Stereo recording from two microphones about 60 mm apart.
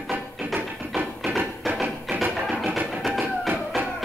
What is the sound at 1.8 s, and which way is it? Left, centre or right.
Music, centre.